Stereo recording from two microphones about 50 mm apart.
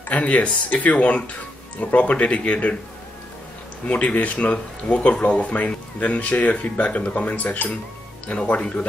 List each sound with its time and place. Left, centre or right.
0.1 s speech: left
3.8 s speech: left